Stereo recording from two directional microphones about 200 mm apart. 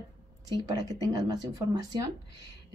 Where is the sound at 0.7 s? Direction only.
20° right (ahead or behind).